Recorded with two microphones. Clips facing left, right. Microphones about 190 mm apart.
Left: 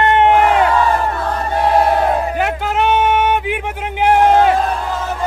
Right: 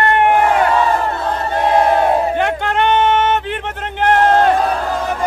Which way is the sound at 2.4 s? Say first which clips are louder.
Even; 5° left (ahead or behind).